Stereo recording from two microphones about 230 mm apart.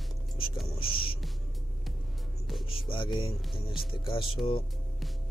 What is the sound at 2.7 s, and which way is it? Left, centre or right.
Speech, left.